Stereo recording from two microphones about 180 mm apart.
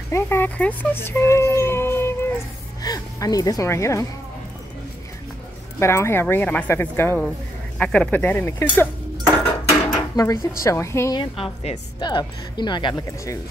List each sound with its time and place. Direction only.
0.1 s speech: 15° left (ahead or behind)
5.8 s speech: 15° left (ahead or behind)
9.9 s dishes: 20° left (ahead or behind)
10.6 s speech: 15° left (ahead or behind)
11.1 s speech: 30° left (ahead or behind)